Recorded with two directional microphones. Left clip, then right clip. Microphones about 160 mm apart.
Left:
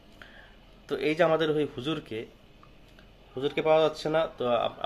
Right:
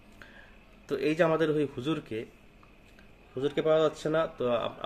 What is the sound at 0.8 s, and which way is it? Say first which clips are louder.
Speech: left 2 dB; 20° right (ahead or behind).